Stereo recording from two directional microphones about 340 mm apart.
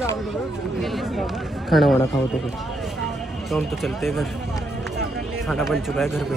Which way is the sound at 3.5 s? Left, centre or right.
Centre.